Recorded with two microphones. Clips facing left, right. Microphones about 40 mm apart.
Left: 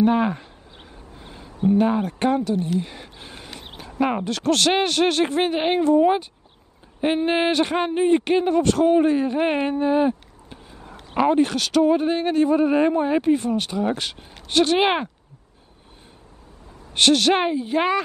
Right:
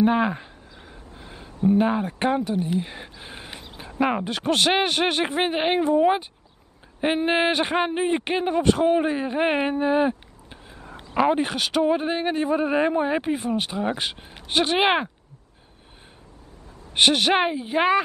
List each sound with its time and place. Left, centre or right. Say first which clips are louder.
0.0 s speech: left 1 dB; centre
1.7 s speech: left 1 dB; centre
10.8 s a sound: right 3 dB; right
11.1 s speech: left 2 dB; centre
16.9 s speech: left 1 dB; centre